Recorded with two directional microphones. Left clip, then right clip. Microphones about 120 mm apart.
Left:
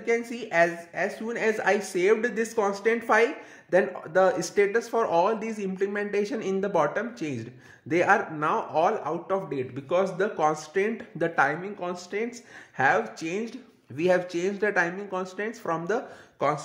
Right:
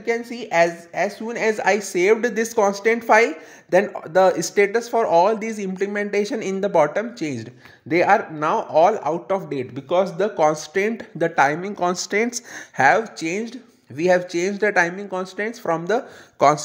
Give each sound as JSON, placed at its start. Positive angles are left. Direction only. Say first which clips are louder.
{"t": 0.2, "sound": "speech", "louder": "right 5 dB", "side_deg": -25}
{"t": 11.1, "sound": "speech", "louder": "right 6 dB", "side_deg": -30}
{"t": 11.6, "sound": "speech", "louder": "right 10 dB", "side_deg": -90}
{"t": 12.7, "sound": "speech", "louder": "right 7 dB", "side_deg": -45}
{"t": 13.0, "sound": "speech", "louder": "right 5 dB", "side_deg": -35}
{"t": 16.3, "sound": "speech", "louder": "right 10 dB", "side_deg": -60}